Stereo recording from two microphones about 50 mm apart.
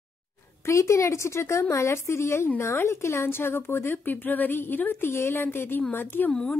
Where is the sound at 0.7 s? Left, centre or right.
Left.